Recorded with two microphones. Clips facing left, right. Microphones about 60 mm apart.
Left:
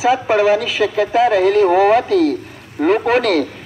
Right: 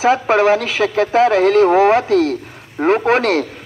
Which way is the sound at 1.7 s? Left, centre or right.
Right.